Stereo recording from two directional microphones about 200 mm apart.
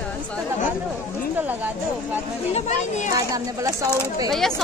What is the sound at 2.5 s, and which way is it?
Speech, 35° left (ahead or behind).